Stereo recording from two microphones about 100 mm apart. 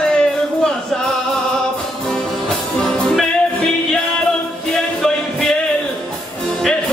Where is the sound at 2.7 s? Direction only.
5° left (ahead or behind).